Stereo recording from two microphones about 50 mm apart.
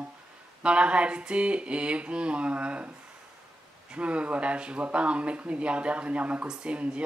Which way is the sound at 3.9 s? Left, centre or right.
Right.